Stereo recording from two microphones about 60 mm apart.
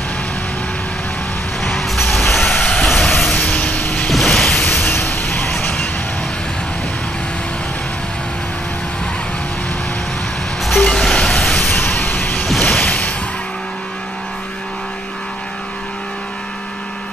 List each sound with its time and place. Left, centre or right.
1.7 s vehicle: centre
2.4 s vehicle: left
2.7 s vehicle: centre
3.6 s vehicle: left
4.1 s mechanisms: centre
4.8 s vehicle: left
10.8 s vehicle: centre
11.7 s a sound: left
12.4 s a sound: centre
12.8 s music: left